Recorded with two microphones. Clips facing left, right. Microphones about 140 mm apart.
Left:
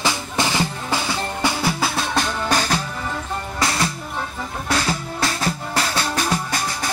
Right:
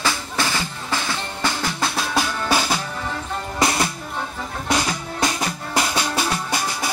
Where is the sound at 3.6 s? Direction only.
20° right (ahead or behind).